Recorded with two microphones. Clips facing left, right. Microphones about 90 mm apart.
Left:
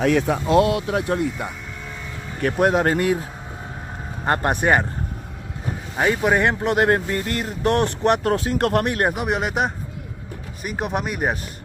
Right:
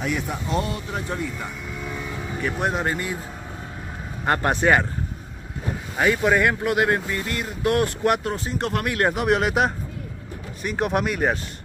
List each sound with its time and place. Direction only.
0.0 s speech: 90° left; by 1.3 s 60° left (ahead or behind)
2.4 s speech: 55° left (ahead or behind)
4.3 s speech: 20° left (ahead or behind)
5.9 s speech: 25° left (ahead or behind)
6.8 s speech: 45° left (ahead or behind); by 8.2 s 25° left (ahead or behind)
8.2 s speech: 65° left (ahead or behind)
8.8 s speech: 25° left (ahead or behind)
9.1 s speech: centre (ahead or behind)